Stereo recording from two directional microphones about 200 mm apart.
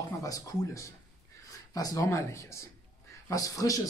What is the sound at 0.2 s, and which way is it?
Speech, 15° left (ahead or behind).